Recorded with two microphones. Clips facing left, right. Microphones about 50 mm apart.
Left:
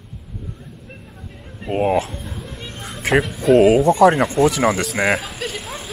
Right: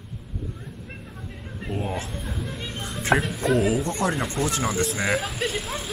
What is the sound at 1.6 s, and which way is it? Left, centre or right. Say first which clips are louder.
Speech: left 11 dB; left.